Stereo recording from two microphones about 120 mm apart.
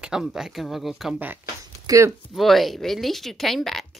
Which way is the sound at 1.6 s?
30° right (ahead or behind).